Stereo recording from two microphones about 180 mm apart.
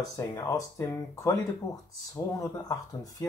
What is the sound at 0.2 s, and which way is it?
Speech, 25° left (ahead or behind).